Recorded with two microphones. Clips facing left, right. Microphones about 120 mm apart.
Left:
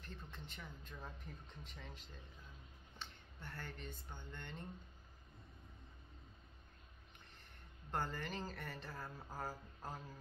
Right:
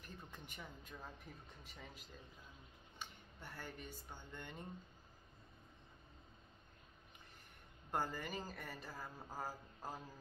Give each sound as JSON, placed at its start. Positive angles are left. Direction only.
{"t": 0.0, "sound": "speech", "side_deg": -10}
{"t": 7.9, "sound": "speech", "side_deg": -10}